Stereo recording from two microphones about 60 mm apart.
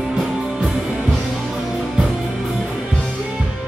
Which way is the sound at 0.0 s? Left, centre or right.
Centre.